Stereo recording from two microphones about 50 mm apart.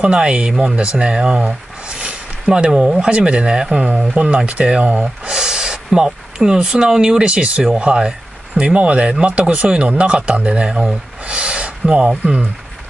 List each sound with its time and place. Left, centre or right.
0.0 s speech: centre